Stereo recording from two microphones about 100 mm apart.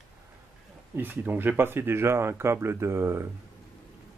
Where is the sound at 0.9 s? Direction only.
20° right (ahead or behind).